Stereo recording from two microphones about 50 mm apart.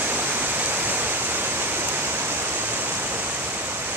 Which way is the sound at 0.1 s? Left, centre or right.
Right.